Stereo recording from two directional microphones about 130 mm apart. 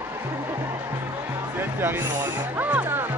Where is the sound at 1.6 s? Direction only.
15° right (ahead or behind).